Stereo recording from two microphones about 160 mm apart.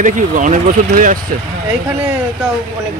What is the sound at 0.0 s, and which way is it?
Speech, 55° right (ahead or behind).